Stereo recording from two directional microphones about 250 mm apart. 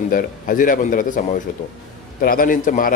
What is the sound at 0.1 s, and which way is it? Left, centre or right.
Speech, left.